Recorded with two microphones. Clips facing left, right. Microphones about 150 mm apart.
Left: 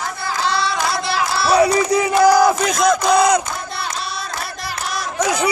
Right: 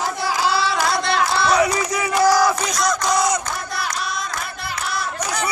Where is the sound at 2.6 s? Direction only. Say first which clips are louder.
Left 6 dB; 55° left (ahead or behind).